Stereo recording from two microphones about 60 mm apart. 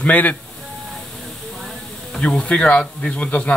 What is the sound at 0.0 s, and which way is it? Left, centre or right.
Speech, left.